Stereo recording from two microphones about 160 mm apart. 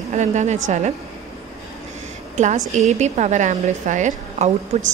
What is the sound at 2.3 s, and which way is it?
A woman's voice, 50° right (ahead or behind).